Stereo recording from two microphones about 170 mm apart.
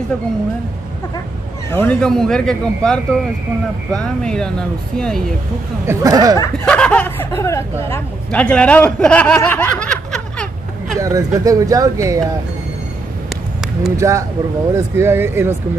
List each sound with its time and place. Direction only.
1.7 s speech: 15° left (ahead or behind)
2.0 s speech: 5° left (ahead or behind)
5.9 s speech: 20° right (ahead or behind)
6.6 s a sound: 5° left (ahead or behind)
7.3 s speech: 20° left (ahead or behind)
8.3 s speech: 5° left (ahead or behind)
11.0 s speech: 20° right (ahead or behind)
13.9 s speech: 15° right (ahead or behind)